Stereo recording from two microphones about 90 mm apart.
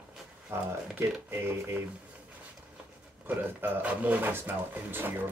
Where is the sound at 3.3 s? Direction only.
20° right (ahead or behind).